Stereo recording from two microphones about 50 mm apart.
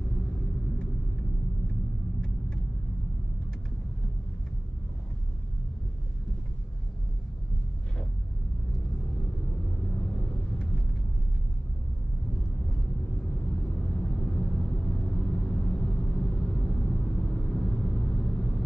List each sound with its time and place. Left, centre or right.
9.8 s vehicle: centre
14.0 s vehicle: centre